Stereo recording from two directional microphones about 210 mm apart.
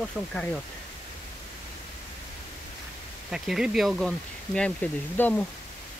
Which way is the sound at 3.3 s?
5° right (ahead or behind).